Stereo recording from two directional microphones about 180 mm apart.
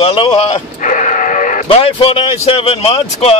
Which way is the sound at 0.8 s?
45° left (ahead or behind).